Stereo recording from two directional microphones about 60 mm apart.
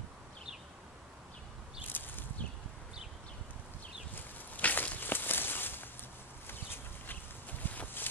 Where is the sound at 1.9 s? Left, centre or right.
Left.